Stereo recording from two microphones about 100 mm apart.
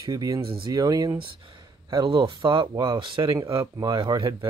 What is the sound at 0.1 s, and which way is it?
Speech, 35° right (ahead or behind).